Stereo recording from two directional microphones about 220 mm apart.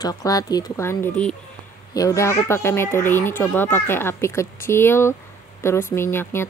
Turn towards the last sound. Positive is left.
turn(degrees=10)  # may be behind; listen again after turning